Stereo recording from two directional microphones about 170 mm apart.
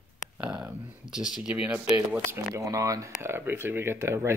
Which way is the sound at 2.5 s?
20° right (ahead or behind).